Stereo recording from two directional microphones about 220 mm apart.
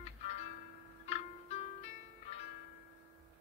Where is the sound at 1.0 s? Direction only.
30° left (ahead or behind).